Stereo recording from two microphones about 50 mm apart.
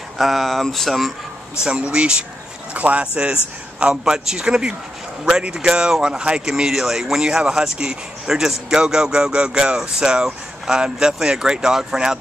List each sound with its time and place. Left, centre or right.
0.2 s speech: centre
1.6 s speech: right